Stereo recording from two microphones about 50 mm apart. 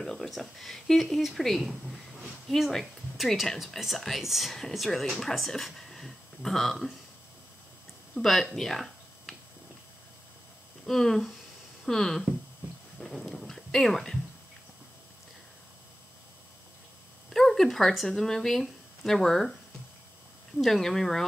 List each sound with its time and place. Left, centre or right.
0.0 s speech: centre
8.2 s speech: centre
10.9 s speech: centre
13.0 s dog: centre
17.3 s speech: centre
20.5 s speech: centre